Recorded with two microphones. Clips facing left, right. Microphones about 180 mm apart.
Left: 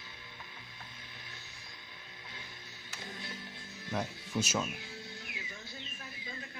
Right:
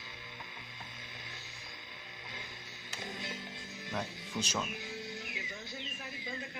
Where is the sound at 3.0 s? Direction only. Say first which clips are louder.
Right 3 dB; 20° right (ahead or behind).